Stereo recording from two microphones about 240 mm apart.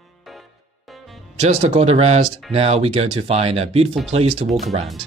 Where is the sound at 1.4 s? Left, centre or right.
Right.